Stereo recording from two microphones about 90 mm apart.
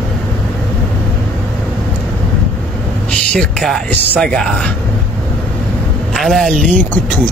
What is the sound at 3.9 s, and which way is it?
Speech, 15° left (ahead or behind).